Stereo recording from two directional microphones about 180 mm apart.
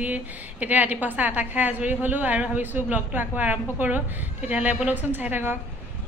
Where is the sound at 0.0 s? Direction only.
10° right (ahead or behind).